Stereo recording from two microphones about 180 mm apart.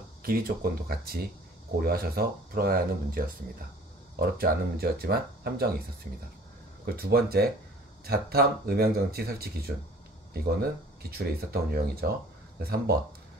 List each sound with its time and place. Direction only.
0.2 s speech: 55° right (ahead or behind)
6.9 s speech: 60° right (ahead or behind)